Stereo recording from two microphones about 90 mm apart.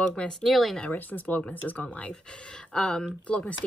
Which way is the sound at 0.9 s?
20° left (ahead or behind).